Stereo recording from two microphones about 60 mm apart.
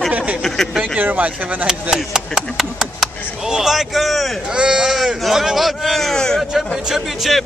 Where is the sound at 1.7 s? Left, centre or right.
Centre.